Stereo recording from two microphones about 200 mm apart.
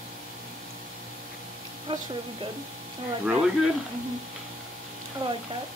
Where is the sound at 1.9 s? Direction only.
25° right (ahead or behind).